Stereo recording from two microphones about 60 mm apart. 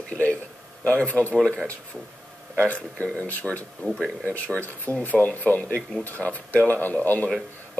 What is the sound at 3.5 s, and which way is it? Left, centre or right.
Speech, right.